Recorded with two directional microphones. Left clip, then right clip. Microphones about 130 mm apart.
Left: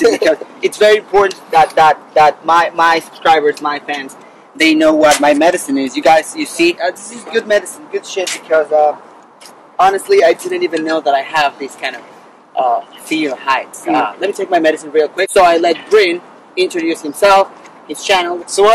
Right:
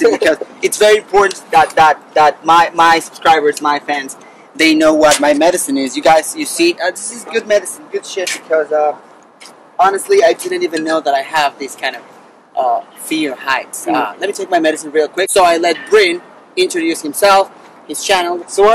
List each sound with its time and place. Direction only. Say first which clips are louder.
0.2 s a sound: even; 20° right (ahead or behind)
1.1 s speech: even; 25° right (ahead or behind); by 7.6 s 5° right (ahead or behind)
9.8 s speech: left 1 dB; 10° right (ahead or behind)